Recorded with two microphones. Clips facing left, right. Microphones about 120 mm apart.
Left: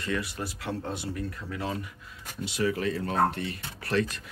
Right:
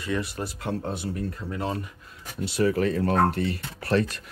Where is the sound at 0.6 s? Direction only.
40° right (ahead or behind).